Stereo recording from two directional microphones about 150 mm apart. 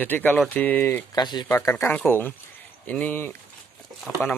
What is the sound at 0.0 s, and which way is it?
Speech, 10° left (ahead or behind).